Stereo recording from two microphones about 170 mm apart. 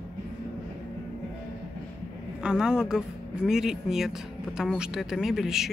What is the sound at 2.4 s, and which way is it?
Speech, 5° right (ahead or behind).